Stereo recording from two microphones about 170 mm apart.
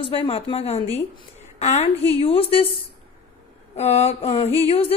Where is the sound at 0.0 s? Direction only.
35° left (ahead or behind).